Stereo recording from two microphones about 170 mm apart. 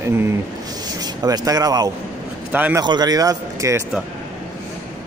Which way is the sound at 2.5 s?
10° right (ahead or behind).